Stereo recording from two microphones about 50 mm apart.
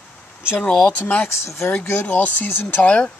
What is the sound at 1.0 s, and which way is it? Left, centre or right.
Speech, left.